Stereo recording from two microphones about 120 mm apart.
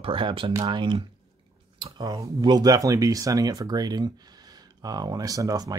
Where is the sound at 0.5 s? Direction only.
35° right (ahead or behind).